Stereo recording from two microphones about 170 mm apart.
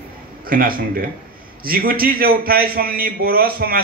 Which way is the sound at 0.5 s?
60° right (ahead or behind).